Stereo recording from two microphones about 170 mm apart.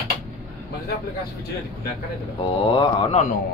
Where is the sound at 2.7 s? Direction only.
30° left (ahead or behind).